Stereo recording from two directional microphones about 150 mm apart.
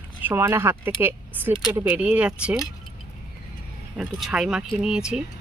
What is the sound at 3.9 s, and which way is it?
Speech, 5° right (ahead or behind).